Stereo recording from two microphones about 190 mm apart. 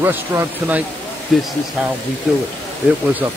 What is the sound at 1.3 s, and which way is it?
Speech, centre (ahead or behind).